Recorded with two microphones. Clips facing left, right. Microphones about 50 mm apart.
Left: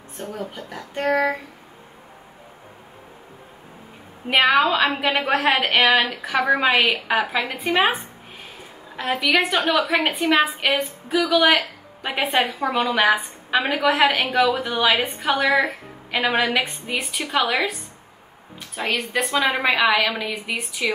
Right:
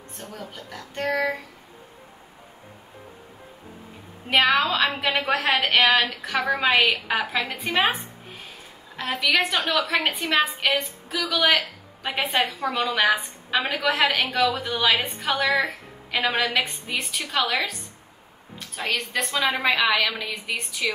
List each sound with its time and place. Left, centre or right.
0.2 s a woman's voice: centre
4.3 s a woman's voice: centre
14.0 s a woman's voice: centre
19.3 s a woman's voice: centre